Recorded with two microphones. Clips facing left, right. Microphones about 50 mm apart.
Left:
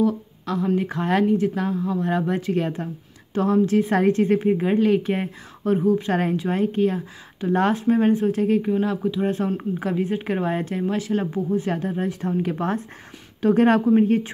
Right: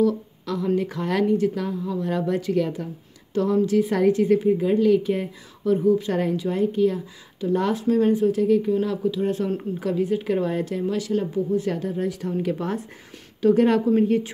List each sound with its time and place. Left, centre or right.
0.0 s a woman's voice: left